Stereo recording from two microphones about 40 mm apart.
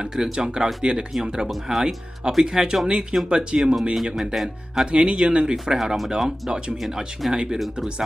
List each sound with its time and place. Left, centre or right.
0.0 s speech: centre
1.5 s speech: centre
2.4 s speech: centre
3.9 s speech: centre
4.9 s speech: right
5.8 s speech: centre